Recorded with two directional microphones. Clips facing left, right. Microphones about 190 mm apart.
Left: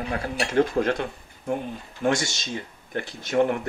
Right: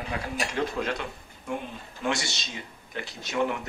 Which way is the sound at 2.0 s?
50° left (ahead or behind).